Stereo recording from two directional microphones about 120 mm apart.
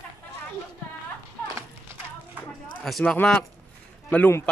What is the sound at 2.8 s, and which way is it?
Speech, centre (ahead or behind).